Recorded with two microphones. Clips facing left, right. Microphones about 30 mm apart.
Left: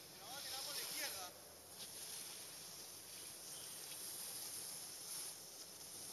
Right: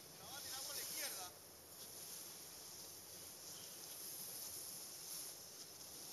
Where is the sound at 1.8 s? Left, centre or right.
Left.